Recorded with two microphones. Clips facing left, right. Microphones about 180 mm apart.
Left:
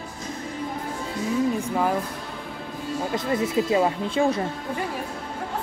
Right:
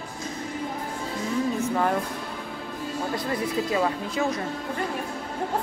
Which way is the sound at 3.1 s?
25° left (ahead or behind).